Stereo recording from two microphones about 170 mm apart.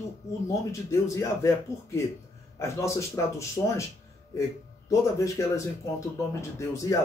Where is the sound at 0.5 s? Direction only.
15° left (ahead or behind).